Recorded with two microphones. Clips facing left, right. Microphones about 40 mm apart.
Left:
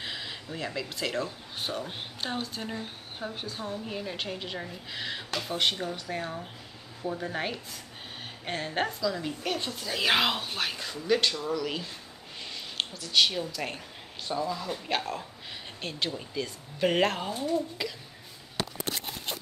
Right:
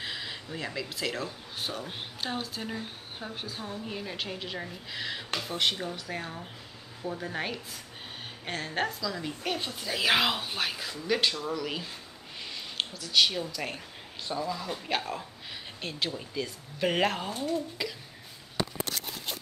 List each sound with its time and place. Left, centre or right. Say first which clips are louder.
0.0 s speech: even; centre